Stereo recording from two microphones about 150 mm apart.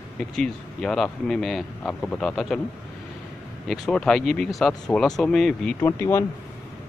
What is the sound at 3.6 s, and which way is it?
Speech, centre (ahead or behind).